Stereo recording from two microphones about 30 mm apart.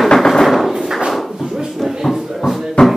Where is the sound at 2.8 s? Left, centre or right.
Left.